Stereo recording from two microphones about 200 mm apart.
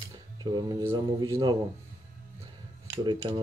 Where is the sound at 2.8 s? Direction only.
15° right (ahead or behind).